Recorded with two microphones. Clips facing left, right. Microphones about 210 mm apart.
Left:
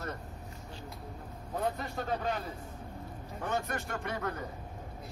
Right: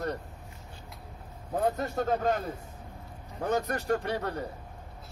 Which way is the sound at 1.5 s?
45° right (ahead or behind).